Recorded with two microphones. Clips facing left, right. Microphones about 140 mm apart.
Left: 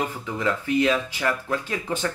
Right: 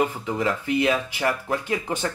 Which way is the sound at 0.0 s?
15° right (ahead or behind).